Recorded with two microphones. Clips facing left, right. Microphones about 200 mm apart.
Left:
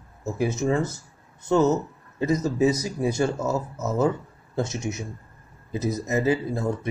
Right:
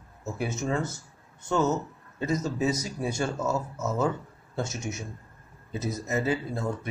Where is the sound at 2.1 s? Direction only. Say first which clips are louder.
Left 5 dB; 15° left (ahead or behind).